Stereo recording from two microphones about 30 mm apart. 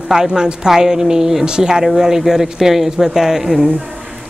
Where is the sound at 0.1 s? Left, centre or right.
Centre.